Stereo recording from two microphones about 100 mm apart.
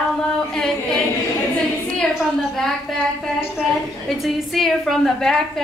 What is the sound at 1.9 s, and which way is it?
A woman's voice, 5° left (ahead or behind).